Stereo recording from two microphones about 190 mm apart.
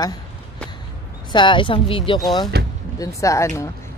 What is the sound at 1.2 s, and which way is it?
Speech, 25° left (ahead or behind).